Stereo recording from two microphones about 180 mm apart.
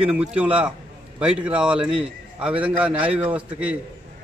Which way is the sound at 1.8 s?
30° right (ahead or behind).